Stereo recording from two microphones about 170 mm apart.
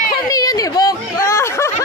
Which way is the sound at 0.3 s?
20° left (ahead or behind).